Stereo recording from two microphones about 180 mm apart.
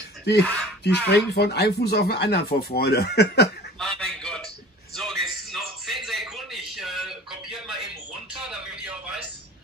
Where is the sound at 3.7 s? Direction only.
Centre (ahead or behind).